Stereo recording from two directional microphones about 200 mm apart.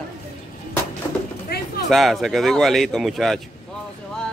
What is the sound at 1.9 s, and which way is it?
Speech, centre (ahead or behind).